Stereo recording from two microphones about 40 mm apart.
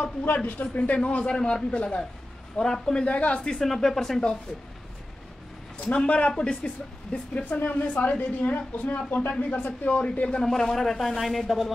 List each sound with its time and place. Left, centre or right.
0.0 s a woman's voice: left
0.9 s speech: left
2.5 s speech: centre
3.1 s a woman's voice: left
3.6 s speech: centre
6.0 s speech: left
7.4 s a woman's voice: left
10.4 s speech: centre